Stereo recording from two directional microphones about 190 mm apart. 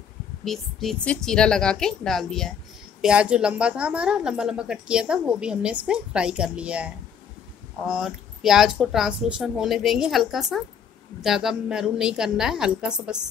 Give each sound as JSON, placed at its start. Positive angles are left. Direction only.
{"t": 0.5, "sound": "a woman's voice", "side_deg": 0}